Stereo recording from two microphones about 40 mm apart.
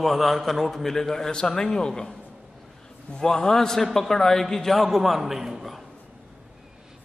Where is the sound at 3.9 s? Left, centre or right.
Centre.